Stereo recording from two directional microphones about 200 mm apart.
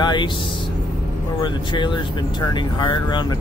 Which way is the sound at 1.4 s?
20° left (ahead or behind).